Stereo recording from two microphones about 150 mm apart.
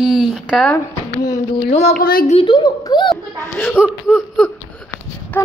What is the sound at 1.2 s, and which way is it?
Speech, 25° left (ahead or behind).